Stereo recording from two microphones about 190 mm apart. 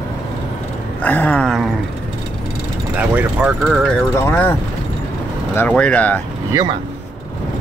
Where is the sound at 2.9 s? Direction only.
10° right (ahead or behind).